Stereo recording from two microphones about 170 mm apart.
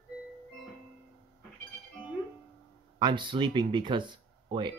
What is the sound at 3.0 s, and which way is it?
Speech, 30° right (ahead or behind).